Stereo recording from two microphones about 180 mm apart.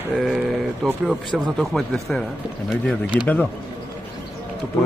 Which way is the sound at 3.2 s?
10° left (ahead or behind).